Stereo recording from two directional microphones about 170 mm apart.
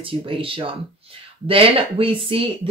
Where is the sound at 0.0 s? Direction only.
30° right (ahead or behind).